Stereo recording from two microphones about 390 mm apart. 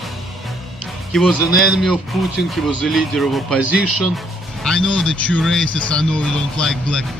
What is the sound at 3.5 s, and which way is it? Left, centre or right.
Speech, left.